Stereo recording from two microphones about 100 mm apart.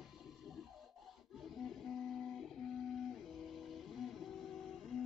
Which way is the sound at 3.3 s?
Centre (ahead or behind).